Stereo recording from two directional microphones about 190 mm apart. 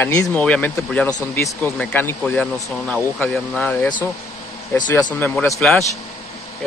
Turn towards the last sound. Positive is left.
turn(degrees=5)  # may be behind; listen again after turning